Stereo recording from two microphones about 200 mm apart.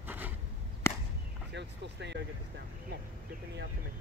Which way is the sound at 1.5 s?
60° right (ahead or behind).